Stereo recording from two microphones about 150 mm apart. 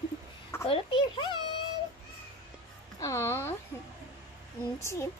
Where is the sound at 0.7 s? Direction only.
35° left (ahead or behind).